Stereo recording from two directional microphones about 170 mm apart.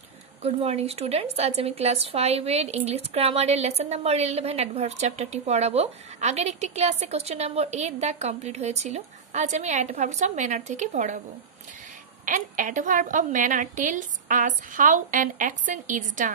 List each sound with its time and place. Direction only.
0.4 s a woman's voice: 35° right (ahead or behind)
12.3 s a woman's voice: 50° right (ahead or behind)